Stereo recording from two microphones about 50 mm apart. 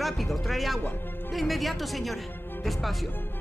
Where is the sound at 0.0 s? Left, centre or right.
Centre.